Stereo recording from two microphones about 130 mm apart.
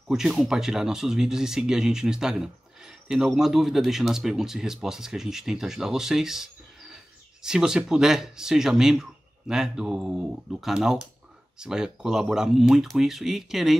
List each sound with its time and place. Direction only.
0.1 s speech: centre (ahead or behind)